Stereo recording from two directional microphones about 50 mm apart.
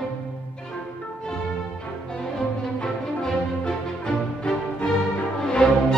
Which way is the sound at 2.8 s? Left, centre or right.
Centre.